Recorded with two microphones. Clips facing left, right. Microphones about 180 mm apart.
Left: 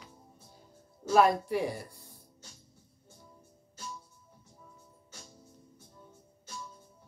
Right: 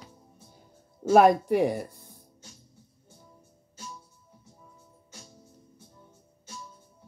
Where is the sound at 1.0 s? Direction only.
50° right (ahead or behind).